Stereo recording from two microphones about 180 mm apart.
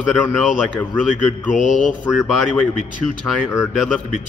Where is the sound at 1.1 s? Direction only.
45° left (ahead or behind).